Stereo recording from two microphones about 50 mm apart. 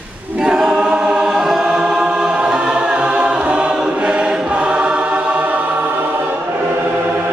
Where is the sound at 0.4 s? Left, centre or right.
Centre; by 5.6 s right.